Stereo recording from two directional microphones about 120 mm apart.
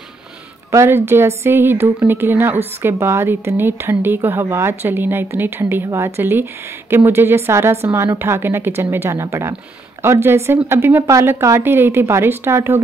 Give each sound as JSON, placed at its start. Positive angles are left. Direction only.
{"t": 0.7, "sound": "a woman's voice", "side_deg": -20}